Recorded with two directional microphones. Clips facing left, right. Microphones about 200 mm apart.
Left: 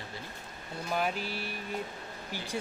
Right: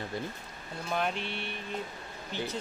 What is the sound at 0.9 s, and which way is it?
A man's voice, 5° left (ahead or behind).